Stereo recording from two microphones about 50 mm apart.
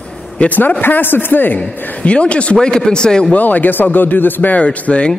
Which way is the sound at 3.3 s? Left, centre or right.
Left.